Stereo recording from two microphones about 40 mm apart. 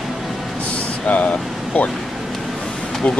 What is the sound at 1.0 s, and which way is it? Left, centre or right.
Vehicle, left.